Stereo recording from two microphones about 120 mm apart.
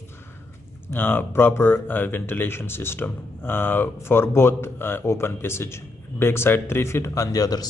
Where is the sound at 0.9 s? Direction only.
15° left (ahead or behind).